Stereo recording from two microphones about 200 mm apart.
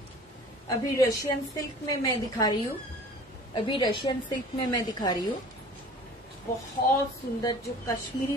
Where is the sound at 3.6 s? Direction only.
25° left (ahead or behind).